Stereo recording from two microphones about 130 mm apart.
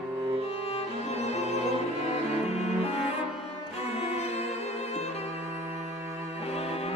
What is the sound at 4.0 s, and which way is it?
Music, 50° left (ahead or behind).